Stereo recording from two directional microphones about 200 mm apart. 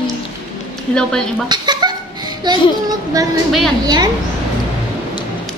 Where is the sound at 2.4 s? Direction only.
20° right (ahead or behind).